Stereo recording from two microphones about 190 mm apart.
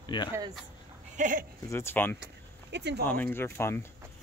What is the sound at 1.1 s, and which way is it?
Speech, 40° right (ahead or behind).